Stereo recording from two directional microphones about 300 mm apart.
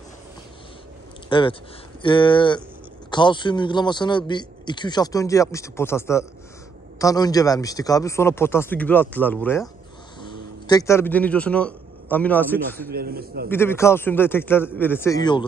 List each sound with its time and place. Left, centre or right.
1.3 s a man's voice: centre
10.7 s a man's voice: centre
12.9 s speech: right
13.5 s a man's voice: centre